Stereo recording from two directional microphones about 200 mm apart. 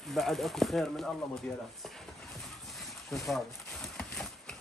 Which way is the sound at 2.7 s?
Centre (ahead or behind).